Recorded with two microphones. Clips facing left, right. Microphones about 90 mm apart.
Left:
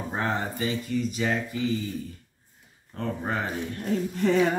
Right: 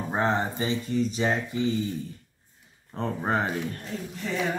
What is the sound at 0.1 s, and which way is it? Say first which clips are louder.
Speech: right 4 dB; 20° right (ahead or behind).